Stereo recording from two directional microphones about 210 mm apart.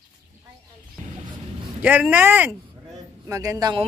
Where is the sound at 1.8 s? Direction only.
5° right (ahead or behind).